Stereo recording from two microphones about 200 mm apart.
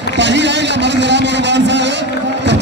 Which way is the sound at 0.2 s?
60° right (ahead or behind).